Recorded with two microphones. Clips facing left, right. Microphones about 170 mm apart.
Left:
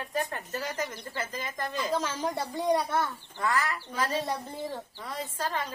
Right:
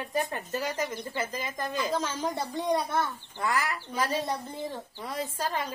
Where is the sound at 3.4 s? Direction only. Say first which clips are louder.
Even; 15° right (ahead or behind).